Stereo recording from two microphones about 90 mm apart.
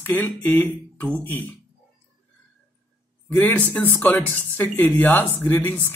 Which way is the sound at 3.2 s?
20° left (ahead or behind).